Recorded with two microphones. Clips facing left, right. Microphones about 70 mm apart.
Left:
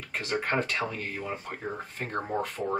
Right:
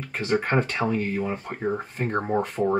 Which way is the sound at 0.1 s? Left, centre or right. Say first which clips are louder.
Right 6 dB; centre.